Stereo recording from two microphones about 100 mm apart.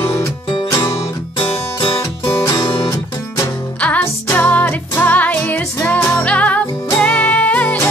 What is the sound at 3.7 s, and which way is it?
Music, 15° left (ahead or behind).